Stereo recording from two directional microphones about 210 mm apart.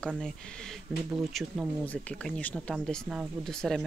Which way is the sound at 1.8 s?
5° left (ahead or behind).